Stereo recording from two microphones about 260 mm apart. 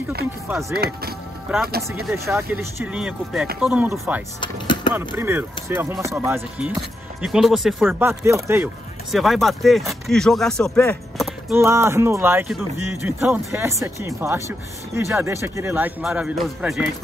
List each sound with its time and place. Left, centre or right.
0.5 s speech: centre
0.7 s speech: right
1.8 s speech: centre
4.4 s speech: centre
4.9 s speech: centre